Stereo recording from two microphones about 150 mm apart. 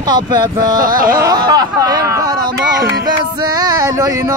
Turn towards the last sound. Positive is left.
turn(degrees=-20)  # may be behind; listen again after turning